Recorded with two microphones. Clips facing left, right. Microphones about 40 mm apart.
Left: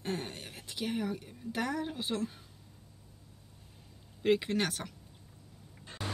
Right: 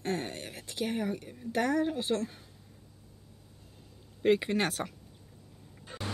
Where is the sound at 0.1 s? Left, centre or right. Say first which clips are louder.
Right 3 dB; right.